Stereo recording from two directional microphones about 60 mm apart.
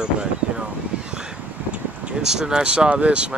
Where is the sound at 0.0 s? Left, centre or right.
Centre.